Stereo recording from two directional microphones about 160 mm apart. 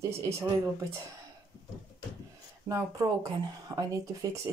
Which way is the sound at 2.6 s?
20° right (ahead or behind).